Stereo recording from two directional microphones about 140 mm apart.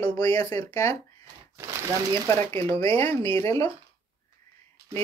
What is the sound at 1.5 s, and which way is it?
Crumpling, 20° right (ahead or behind).